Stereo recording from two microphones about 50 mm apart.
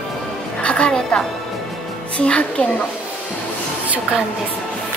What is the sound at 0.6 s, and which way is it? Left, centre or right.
A woman's voice, left.